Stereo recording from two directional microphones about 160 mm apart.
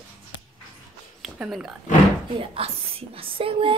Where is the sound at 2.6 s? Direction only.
35° right (ahead or behind).